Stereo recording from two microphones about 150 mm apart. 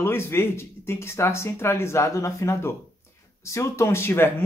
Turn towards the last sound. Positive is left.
turn(degrees=15)  # may be behind; listen again after turning